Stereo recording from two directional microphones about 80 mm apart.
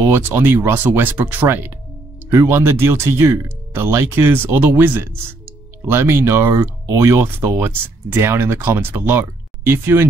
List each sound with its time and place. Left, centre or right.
0.0 s speech: right